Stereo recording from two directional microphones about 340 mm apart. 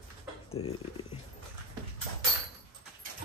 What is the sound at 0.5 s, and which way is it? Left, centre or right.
Speech, centre.